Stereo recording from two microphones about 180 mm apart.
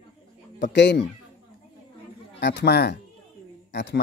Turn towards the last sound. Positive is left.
turn(degrees=80)